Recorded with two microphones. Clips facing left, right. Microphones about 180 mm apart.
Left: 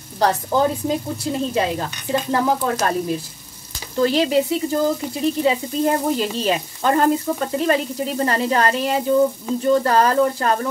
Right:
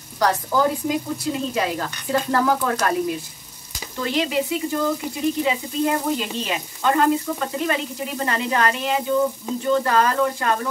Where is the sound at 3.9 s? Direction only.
35° left (ahead or behind).